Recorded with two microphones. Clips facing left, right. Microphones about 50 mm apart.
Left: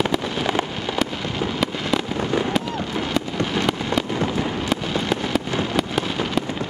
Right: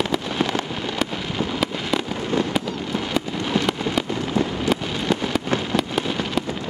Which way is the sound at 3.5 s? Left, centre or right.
Centre.